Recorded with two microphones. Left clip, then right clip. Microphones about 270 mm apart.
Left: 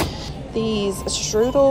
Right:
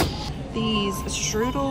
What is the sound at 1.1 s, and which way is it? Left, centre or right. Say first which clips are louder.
Speech: left 4 dB; centre.